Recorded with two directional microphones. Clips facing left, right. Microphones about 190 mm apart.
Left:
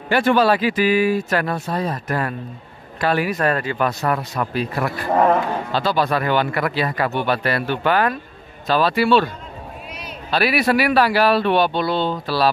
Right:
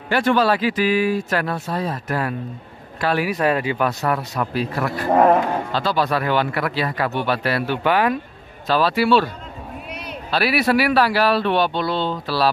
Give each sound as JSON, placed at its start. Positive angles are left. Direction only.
{"t": 0.1, "sound": "speech", "side_deg": 5}
{"t": 9.8, "sound": "a sound", "side_deg": -60}
{"t": 10.3, "sound": "speech", "side_deg": -5}